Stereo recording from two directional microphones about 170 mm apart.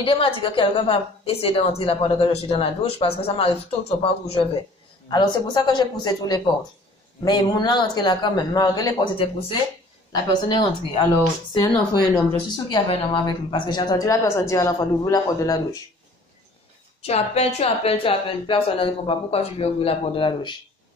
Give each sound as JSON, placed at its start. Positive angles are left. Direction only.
{"t": 0.0, "sound": "a woman's voice", "side_deg": 30}
{"t": 17.0, "sound": "a woman's voice", "side_deg": 35}